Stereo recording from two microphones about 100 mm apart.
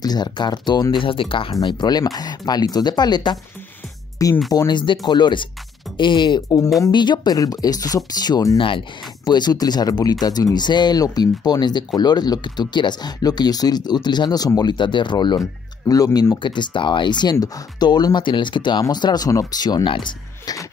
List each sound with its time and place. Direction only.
0.0 s speech: 45° left (ahead or behind); by 1.5 s 60° left (ahead or behind)
1.5 s speech: 45° left (ahead or behind)
4.5 s speech: 40° left (ahead or behind)
8.5 s speech: 60° left (ahead or behind)
9.2 s speech: 45° left (ahead or behind)
16.3 s speech: 50° left (ahead or behind)